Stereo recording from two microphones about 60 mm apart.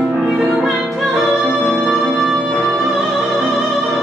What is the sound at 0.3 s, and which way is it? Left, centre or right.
Music, centre.